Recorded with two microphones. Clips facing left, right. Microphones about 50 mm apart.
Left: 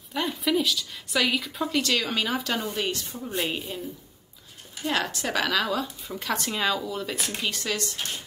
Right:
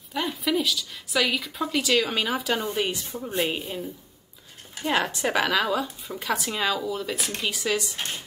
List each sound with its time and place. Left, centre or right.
0.1 s a woman's voice: centre; by 3.4 s right
3.4 s speech: centre
4.8 s a woman's voice: centre